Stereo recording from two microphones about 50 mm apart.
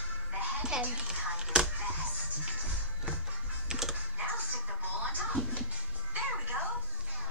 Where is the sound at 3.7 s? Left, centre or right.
Centre.